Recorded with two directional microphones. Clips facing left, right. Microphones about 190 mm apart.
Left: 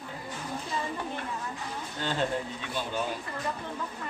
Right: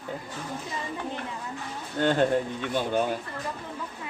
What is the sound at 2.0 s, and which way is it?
Speech, 55° right (ahead or behind).